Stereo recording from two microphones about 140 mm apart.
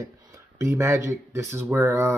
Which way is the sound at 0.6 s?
20° right (ahead or behind).